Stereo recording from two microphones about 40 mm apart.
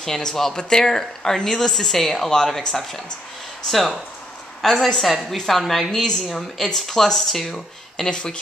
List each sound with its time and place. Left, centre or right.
0.0 s speech: centre
3.6 s speech: centre
8.0 s speech: left